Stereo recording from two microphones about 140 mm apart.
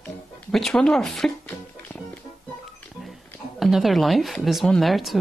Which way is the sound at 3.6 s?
Centre (ahead or behind).